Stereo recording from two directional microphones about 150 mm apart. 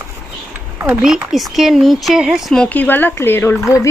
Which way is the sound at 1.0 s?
5° right (ahead or behind).